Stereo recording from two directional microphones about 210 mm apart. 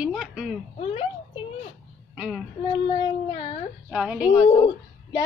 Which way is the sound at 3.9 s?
5° right (ahead or behind).